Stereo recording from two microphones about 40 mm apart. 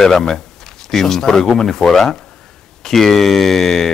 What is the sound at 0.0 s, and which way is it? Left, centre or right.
Speech, centre.